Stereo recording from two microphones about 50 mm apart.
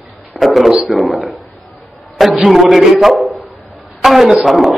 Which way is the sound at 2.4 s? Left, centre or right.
Centre.